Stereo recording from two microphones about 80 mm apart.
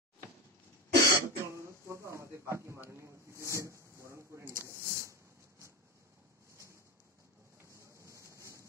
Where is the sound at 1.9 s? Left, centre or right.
Right.